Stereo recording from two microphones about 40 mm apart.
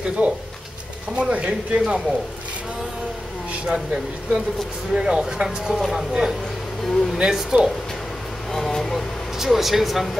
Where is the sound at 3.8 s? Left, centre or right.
Right.